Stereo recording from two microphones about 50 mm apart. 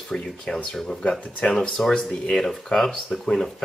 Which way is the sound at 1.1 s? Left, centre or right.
Centre.